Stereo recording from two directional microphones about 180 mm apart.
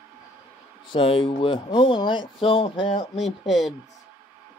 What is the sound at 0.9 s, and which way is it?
Speech, 30° left (ahead or behind).